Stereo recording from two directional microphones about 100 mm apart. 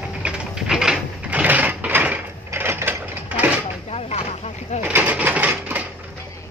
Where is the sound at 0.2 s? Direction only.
10° right (ahead or behind).